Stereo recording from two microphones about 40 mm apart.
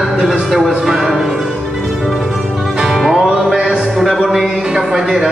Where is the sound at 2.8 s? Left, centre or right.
Centre.